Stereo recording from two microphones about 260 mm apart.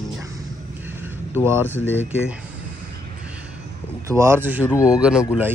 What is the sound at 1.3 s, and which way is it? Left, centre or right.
Speech, centre.